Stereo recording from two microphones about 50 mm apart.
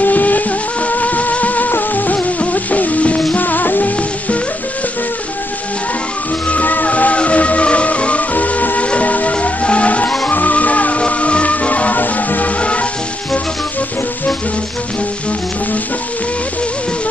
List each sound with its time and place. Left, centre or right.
0.0 s music: left
6.5 s music: left
12.5 s music: left